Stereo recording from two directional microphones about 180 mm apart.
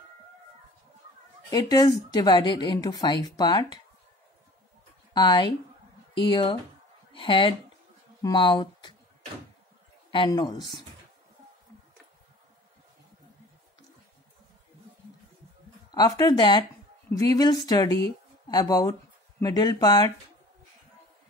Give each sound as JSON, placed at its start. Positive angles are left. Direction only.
{"t": 1.5, "sound": "a woman's voice", "side_deg": 20}
{"t": 5.1, "sound": "a woman's voice", "side_deg": 25}
{"t": 10.1, "sound": "a woman's voice", "side_deg": 25}
{"t": 15.9, "sound": "a woman's voice", "side_deg": 25}